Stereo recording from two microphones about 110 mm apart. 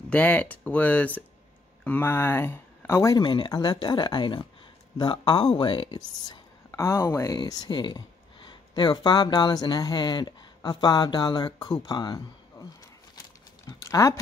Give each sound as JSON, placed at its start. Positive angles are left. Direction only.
{"t": 0.1, "sound": "speech", "side_deg": 15}
{"t": 3.2, "sound": "speech", "side_deg": 45}
{"t": 6.7, "sound": "speech", "side_deg": 25}
{"t": 7.3, "sound": "speech", "side_deg": 40}
{"t": 13.7, "sound": "a sound", "side_deg": 30}